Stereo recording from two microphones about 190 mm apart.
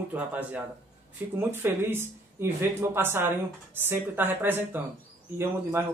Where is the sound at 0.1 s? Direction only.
10° right (ahead or behind).